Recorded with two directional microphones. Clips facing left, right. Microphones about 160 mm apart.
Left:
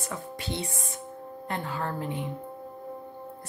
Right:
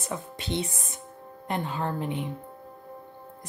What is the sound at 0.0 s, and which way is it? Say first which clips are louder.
A woman's voice: right 1 dB; 20° right (ahead or behind).